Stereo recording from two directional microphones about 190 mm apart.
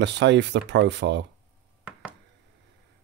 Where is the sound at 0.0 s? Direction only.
65° right (ahead or behind).